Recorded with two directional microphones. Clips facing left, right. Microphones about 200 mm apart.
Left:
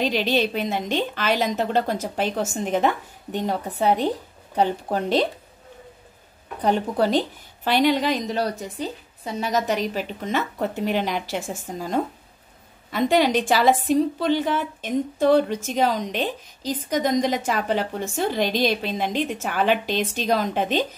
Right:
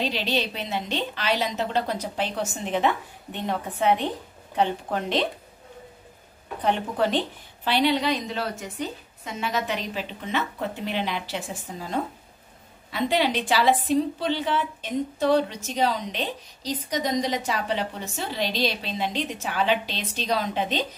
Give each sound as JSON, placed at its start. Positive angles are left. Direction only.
{"t": 0.0, "sound": "a woman's voice", "side_deg": 50}
{"t": 6.6, "sound": "speech", "side_deg": 40}